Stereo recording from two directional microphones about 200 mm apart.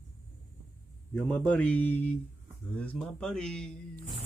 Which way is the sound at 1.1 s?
10° left (ahead or behind).